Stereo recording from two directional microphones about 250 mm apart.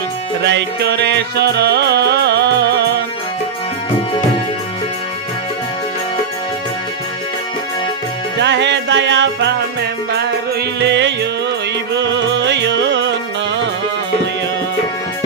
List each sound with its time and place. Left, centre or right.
0.4 s music: right
8.4 s music: right